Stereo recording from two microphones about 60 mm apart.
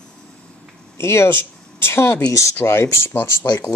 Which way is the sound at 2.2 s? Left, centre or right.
Left.